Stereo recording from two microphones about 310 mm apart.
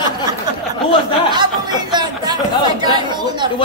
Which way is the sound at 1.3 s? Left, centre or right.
Centre.